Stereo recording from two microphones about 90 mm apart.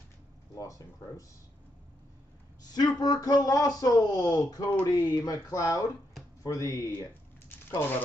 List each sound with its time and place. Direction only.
0.6 s speech: 40° left (ahead or behind)
2.7 s a man's voice: 50° left (ahead or behind)
7.4 s a sound: 25° left (ahead or behind)